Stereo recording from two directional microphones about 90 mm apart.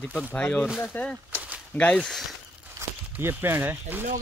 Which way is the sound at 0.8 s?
20° left (ahead or behind).